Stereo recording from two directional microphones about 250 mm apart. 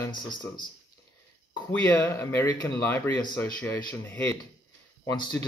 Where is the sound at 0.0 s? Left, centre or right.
Centre.